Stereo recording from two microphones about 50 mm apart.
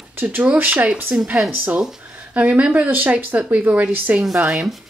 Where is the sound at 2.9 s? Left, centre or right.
Right.